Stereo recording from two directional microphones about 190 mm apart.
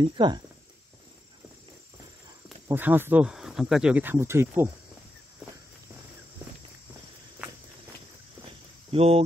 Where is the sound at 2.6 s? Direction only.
10° right (ahead or behind).